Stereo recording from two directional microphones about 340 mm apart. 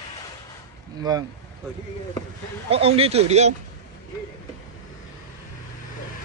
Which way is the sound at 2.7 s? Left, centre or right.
Centre.